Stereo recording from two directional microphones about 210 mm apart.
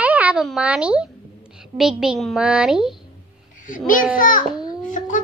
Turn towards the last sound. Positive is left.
turn(degrees=40)  # may be behind; listen again after turning